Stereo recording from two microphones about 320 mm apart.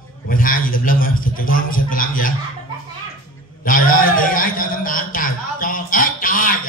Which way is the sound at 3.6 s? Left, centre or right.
Left.